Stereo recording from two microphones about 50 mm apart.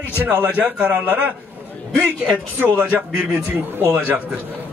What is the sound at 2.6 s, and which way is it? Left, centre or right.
A man's voice, right.